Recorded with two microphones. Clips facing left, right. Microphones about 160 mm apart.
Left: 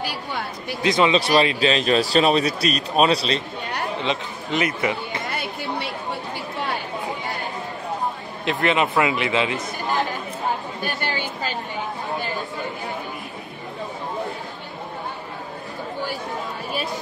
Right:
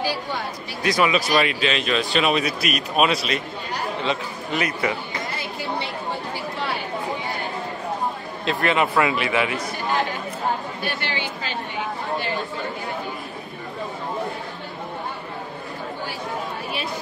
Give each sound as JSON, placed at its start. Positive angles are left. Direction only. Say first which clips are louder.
{"t": 0.8, "sound": "speech", "louder": "left 2 dB", "side_deg": 25}
{"t": 4.0, "sound": "speech", "louder": "even", "side_deg": 20}
{"t": 8.5, "sound": "speech", "louder": "even", "side_deg": 20}
{"t": 10.8, "sound": "chatter", "louder": "left 1 dB", "side_deg": 45}